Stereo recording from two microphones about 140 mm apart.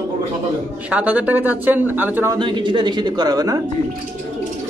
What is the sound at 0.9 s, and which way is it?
Speech, 10° right (ahead or behind).